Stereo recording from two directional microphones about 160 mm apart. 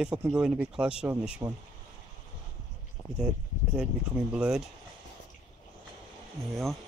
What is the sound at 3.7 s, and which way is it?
Speech, 5° right (ahead or behind).